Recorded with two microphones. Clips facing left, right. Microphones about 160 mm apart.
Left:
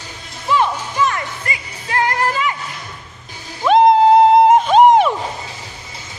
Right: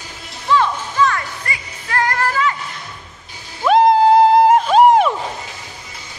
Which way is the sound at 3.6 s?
Centre (ahead or behind).